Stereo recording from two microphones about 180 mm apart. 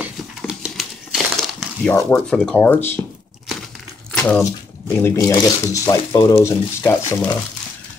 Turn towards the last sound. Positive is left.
turn(degrees=20)  # may be behind; listen again after turning